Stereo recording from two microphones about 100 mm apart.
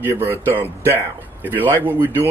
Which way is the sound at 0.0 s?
25° right (ahead or behind).